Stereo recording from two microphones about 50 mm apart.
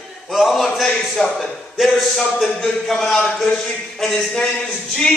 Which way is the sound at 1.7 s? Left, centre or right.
Centre.